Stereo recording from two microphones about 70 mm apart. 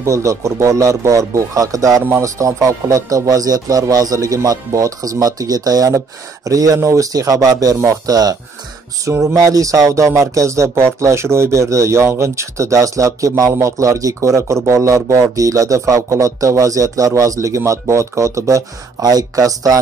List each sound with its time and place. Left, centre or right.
0.0 s speech: right